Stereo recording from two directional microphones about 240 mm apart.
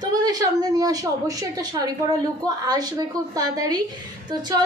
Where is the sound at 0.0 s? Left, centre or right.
Centre.